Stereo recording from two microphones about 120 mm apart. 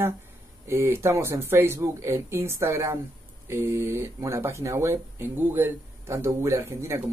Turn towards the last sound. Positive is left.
turn(degrees=-25)  # may be behind; listen again after turning